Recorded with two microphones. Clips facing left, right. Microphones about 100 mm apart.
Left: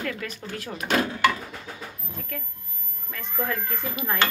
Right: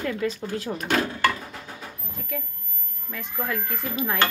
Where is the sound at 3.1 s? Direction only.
5° right (ahead or behind).